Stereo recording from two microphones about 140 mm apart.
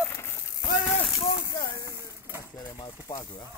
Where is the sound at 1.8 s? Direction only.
20° right (ahead or behind).